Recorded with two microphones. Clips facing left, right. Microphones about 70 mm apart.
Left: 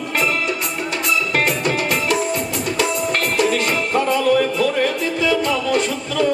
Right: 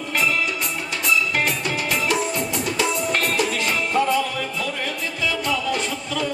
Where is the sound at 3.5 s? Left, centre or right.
Left.